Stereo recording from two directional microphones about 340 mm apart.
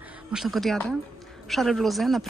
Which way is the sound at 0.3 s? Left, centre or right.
Centre.